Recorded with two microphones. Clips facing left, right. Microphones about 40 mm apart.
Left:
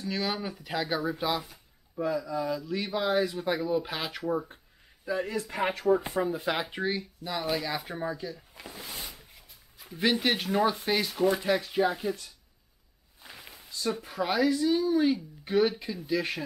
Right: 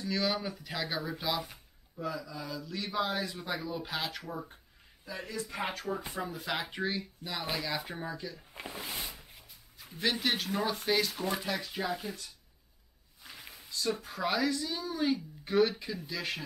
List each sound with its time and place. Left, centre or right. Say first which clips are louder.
0.1 s speech: even; centre
2.0 s speech: left 8 dB; left
2.5 s speech: left 4 dB; centre
5.0 s speech: left 11 dB; left
5.3 s speech: left 6 dB; left
6.7 s speech: left 3 dB; centre
8.5 s speech: right 1 dB; right
9.0 s cupboard open or close: even; centre
9.9 s speech: left 5 dB; centre
11.4 s speech: left 9 dB; left
13.4 s a sound: left 2 dB; centre
14.2 s speech: left 6 dB; centre